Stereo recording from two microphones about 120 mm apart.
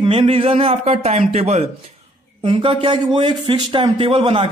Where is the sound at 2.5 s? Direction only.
50° right (ahead or behind).